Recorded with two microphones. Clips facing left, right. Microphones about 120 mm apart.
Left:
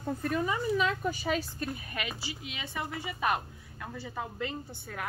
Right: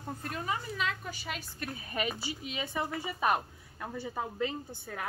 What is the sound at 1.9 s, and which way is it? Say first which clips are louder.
A woman's voice: right 3 dB; 35° right (ahead or behind).